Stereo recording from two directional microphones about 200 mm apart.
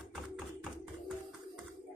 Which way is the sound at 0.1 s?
5° right (ahead or behind).